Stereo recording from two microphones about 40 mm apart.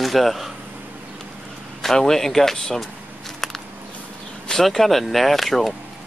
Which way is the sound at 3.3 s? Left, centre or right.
Centre.